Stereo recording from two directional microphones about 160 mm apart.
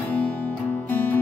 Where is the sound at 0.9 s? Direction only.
10° left (ahead or behind).